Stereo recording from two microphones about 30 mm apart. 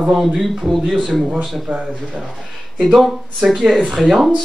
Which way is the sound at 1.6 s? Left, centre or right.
Right.